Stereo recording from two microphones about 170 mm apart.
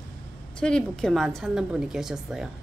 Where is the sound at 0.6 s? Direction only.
5° left (ahead or behind).